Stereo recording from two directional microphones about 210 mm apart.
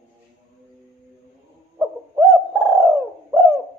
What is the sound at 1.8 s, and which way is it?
Owl, centre (ahead or behind).